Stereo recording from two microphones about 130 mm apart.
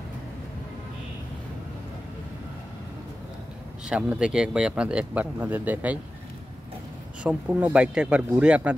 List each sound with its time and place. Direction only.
3.9 s speech: 5° right (ahead or behind)
7.2 s speech: 10° right (ahead or behind)